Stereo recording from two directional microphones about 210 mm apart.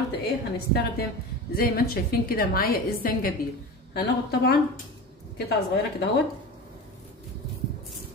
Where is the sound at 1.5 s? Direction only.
45° left (ahead or behind).